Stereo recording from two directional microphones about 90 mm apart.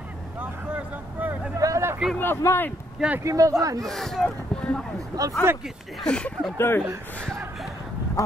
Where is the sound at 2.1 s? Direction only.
25° left (ahead or behind).